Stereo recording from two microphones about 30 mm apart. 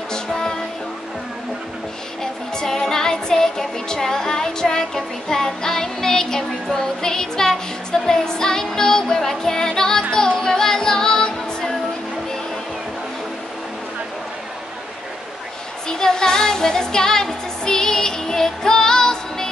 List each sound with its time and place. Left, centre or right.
0.1 s music: left
2.5 s music: left
9.2 s music: centre
9.5 s music: left
15.9 s music: left